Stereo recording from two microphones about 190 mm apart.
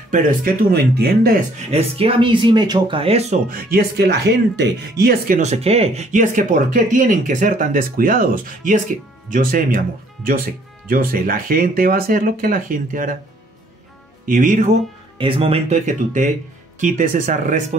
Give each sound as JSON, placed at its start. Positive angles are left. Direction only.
{"t": 0.1, "sound": "speech", "side_deg": -50}
{"t": 1.7, "sound": "speech", "side_deg": -30}
{"t": 3.4, "sound": "speech", "side_deg": -50}
{"t": 5.4, "sound": "speech", "side_deg": -35}
{"t": 14.2, "sound": "speech", "side_deg": -45}
{"t": 15.1, "sound": "speech", "side_deg": -30}